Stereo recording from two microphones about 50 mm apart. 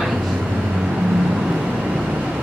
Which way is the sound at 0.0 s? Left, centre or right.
Centre.